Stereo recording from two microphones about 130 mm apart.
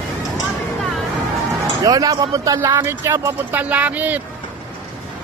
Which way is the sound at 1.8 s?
30° right (ahead or behind).